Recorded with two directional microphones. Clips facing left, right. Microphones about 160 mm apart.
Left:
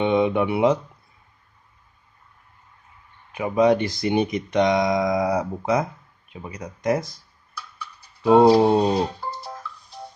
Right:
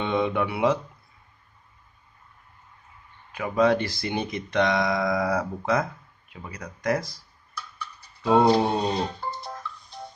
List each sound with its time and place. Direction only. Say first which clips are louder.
0.0 s speech: left 5 dB; 20° left (ahead or behind)
3.3 s speech: left 3 dB; 20° left (ahead or behind)
8.2 s a sound: left 5 dB; 25° left (ahead or behind)
8.8 s music: left 5 dB; 10° left (ahead or behind)